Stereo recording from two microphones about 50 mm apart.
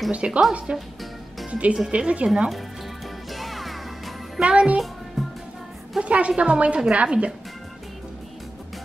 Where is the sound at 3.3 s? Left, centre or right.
Centre.